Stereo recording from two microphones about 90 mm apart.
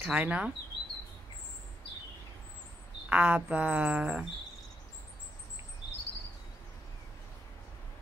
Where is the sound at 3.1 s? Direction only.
10° right (ahead or behind).